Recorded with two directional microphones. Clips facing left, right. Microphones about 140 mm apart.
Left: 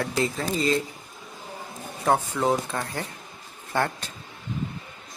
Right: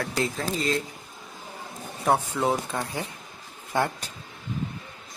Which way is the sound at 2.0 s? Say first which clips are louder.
Left 1 dB; 10° right (ahead or behind).